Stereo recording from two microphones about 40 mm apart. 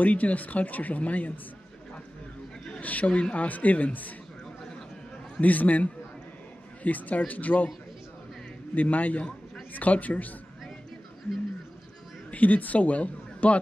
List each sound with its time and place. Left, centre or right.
0.0 s speech: left
2.8 s speech: left
5.4 s speech: left
8.7 s speech: left
12.3 s a woman's voice: left